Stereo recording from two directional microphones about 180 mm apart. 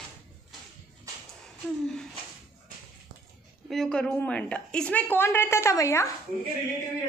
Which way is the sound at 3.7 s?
5° left (ahead or behind).